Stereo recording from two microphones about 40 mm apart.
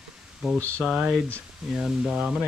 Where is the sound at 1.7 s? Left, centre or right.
Centre.